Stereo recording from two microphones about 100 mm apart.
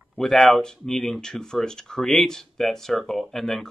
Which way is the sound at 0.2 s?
5° left (ahead or behind).